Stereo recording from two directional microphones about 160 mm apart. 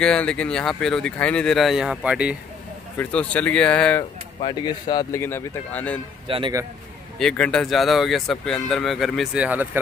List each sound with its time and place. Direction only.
0.0 s speech: 5° left (ahead or behind)
3.0 s speech: 10° left (ahead or behind)
4.4 s speech: 30° left (ahead or behind)
5.2 s speech: 15° left (ahead or behind)
6.2 s speech: 35° right (ahead or behind)
7.2 s speech: 5° left (ahead or behind)